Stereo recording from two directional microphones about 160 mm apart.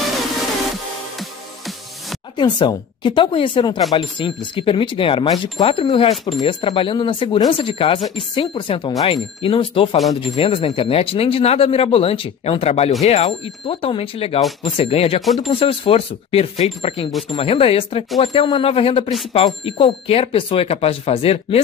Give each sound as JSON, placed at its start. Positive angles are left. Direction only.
{"t": 2.3, "sound": "speech", "side_deg": 30}